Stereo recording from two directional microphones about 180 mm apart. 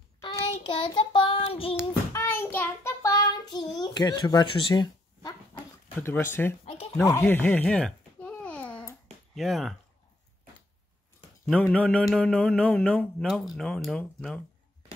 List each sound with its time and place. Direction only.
0.2 s child singing: 20° left (ahead or behind)
1.8 s child singing: 15° left (ahead or behind)
3.8 s speech: 25° left (ahead or behind)
6.6 s a sound: 35° left (ahead or behind)
7.0 s babbling: 15° left (ahead or behind)
9.3 s speech: centre (ahead or behind)
11.7 s speech: 5° left (ahead or behind)